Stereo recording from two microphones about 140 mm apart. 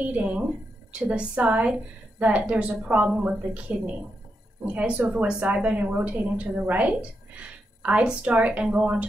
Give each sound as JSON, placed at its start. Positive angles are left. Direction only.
{"t": 0.0, "sound": "a woman's voice", "side_deg": -10}
{"t": 4.7, "sound": "a woman's voice", "side_deg": -10}